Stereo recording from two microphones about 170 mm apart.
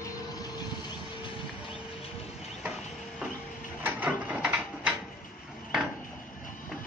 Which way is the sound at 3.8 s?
10° right (ahead or behind).